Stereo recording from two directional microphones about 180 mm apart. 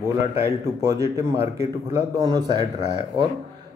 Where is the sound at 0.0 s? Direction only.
15° right (ahead or behind).